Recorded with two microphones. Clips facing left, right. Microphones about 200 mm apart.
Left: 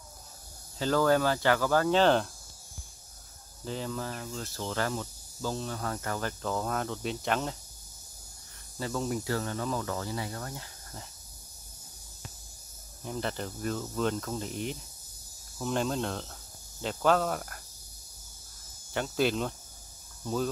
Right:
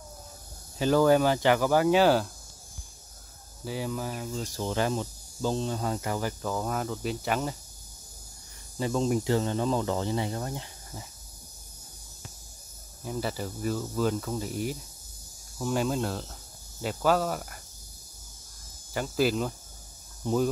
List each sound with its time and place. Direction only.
0.7 s speech: 15° right (ahead or behind)
3.6 s speech: 10° right (ahead or behind)
8.7 s speech: 20° right (ahead or behind)
13.0 s speech: 5° right (ahead or behind)
18.9 s speech: 5° right (ahead or behind)